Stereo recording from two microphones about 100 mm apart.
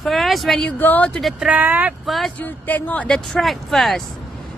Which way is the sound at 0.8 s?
20° left (ahead or behind).